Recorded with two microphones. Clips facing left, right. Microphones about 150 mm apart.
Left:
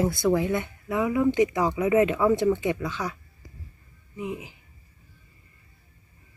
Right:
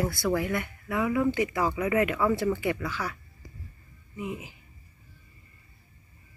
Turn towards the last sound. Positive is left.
turn(degrees=20)  # may be behind; listen again after turning